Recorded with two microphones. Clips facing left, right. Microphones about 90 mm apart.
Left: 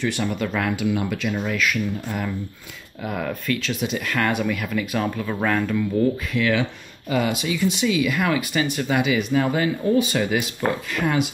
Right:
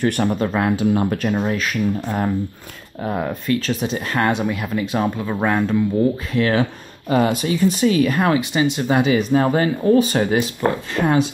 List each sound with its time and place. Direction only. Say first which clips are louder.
0.0 s speech: right 5 dB; 50° right (ahead or behind); by 5.9 s 25° right (ahead or behind)
6.3 s speech: right 3 dB; 35° right (ahead or behind)